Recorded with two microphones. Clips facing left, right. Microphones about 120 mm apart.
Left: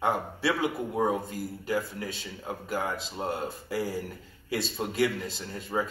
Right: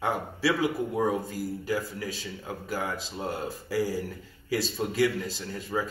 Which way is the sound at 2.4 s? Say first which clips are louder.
Left 1 dB; 20° left (ahead or behind).